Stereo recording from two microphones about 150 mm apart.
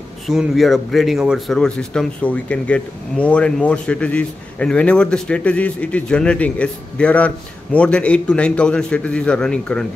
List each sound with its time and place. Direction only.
0.3 s speech: centre (ahead or behind)